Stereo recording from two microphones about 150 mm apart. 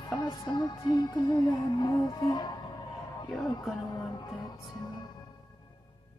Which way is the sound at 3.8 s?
30° left (ahead or behind).